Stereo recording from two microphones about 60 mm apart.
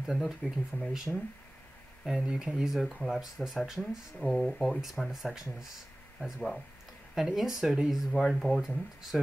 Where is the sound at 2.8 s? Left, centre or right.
Centre.